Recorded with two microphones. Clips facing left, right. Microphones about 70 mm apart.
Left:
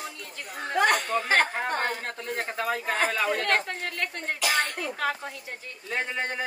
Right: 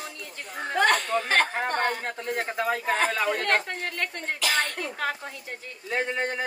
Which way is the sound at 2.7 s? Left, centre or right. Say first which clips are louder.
Right 1 dB; centre.